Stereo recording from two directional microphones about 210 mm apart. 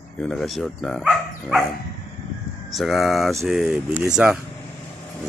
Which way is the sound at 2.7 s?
Centre (ahead or behind).